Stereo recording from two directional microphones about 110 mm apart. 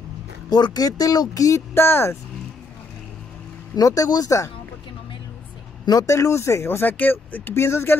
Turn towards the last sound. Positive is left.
turn(degrees=20)  # may be behind; listen again after turning